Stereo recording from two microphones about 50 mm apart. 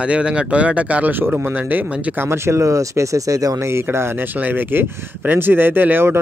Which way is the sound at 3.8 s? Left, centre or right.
Right.